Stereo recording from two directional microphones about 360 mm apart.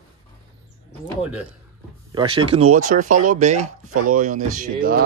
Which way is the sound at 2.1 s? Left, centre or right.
Centre.